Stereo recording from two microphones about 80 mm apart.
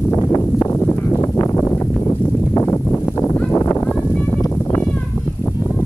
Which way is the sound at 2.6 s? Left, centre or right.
Left.